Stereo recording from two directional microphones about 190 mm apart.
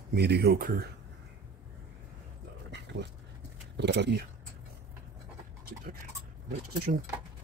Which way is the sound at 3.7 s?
65° right (ahead or behind).